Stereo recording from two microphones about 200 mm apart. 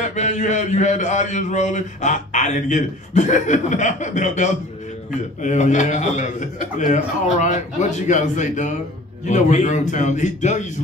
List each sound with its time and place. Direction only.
0.1 s a man's voice: 35° left (ahead or behind)